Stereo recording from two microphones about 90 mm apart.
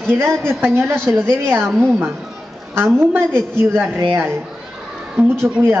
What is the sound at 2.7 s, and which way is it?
A woman's voice, 25° right (ahead or behind).